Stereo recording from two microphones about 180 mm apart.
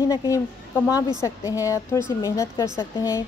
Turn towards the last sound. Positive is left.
turn(degrees=15)  # may be behind; listen again after turning